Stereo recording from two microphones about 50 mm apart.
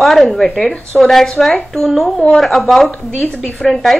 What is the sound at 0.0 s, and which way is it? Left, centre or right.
Speech, centre.